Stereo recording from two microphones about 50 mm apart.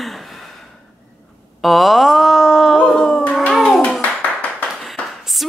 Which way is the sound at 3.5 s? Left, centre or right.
Centre.